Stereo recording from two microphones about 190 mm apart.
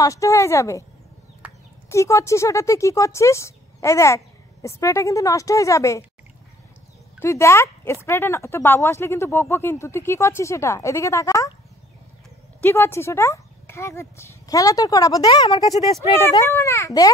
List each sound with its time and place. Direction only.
0.0 s speech: 15° left (ahead or behind)
1.4 s chicken: 5° right (ahead or behind)
1.9 s speech: 15° left (ahead or behind)
7.2 s speech: 15° left (ahead or behind)
12.5 s speech: 10° left (ahead or behind)